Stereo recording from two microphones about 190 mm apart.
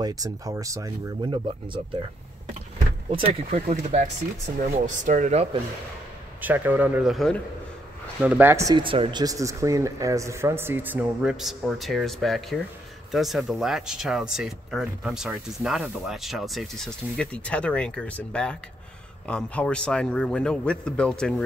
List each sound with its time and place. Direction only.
0.0 s speech: 20° right (ahead or behind)
3.1 s speech: 35° right (ahead or behind)
6.4 s speech: 10° right (ahead or behind)
8.2 s speech: 10° right (ahead or behind)